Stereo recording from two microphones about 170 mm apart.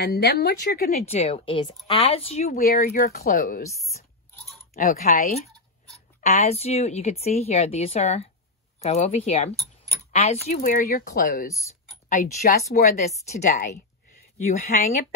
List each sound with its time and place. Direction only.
0.0 s a woman's voice: 65° left (ahead or behind)
0.9 s a woman's voice: 40° left (ahead or behind)
2.4 s speech: 55° left (ahead or behind)
4.7 s a woman's voice: 50° left (ahead or behind)
6.2 s a woman's voice: 40° left (ahead or behind); by 11.5 s 55° left (ahead or behind)
12.7 s a woman's voice: 45° left (ahead or behind)